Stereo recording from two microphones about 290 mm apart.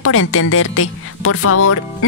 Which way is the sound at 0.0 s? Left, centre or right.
Left.